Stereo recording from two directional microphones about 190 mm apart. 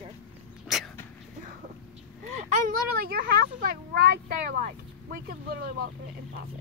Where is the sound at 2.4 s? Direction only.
45° right (ahead or behind).